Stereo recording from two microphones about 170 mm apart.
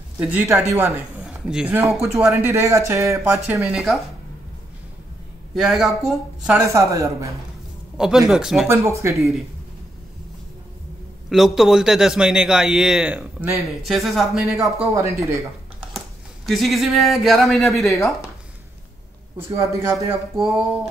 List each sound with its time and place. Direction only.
0.2 s a man's voice: 5° right (ahead or behind)
3.3 s a man's voice: 5° right (ahead or behind)
5.5 s a man's voice: centre (ahead or behind)
6.6 s a woman's voice: 20° right (ahead or behind)
8.0 s a man's voice: 5° right (ahead or behind)
8.6 s speech: 15° right (ahead or behind)
9.1 s a man's voice: centre (ahead or behind)
11.2 s a man's voice: centre (ahead or behind)
15.0 s speech: 15° right (ahead or behind)
16.4 s a man's voice: centre (ahead or behind)
17.7 s speech: 20° left (ahead or behind)
19.3 s speech: 15° right (ahead or behind)